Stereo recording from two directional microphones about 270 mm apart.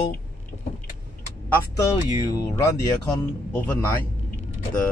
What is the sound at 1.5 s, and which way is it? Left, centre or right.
Speech, centre.